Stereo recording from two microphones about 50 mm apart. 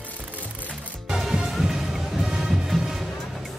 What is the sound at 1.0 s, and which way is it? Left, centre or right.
Music, centre.